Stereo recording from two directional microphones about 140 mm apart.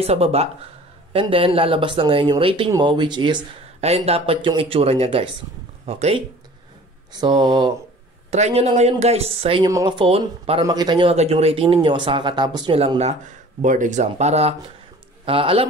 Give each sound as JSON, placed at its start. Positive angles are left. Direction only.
{"t": 0.0, "sound": "speech", "side_deg": -45}
{"t": 3.8, "sound": "speech", "side_deg": -45}
{"t": 7.1, "sound": "speech", "side_deg": -30}
{"t": 8.3, "sound": "speech", "side_deg": -50}
{"t": 10.6, "sound": "speech", "side_deg": -30}
{"t": 11.1, "sound": "speech", "side_deg": -50}
{"t": 13.3, "sound": "speech", "side_deg": -65}